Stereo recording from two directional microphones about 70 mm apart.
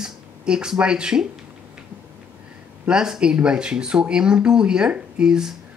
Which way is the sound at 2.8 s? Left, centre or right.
Centre.